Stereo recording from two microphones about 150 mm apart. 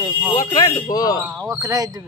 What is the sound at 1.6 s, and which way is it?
Speech, 25° right (ahead or behind).